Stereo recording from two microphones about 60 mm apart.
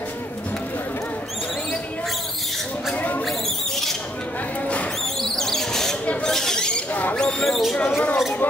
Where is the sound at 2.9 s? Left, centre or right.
Left.